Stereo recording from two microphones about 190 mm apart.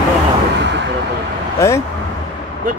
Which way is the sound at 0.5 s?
70° right (ahead or behind).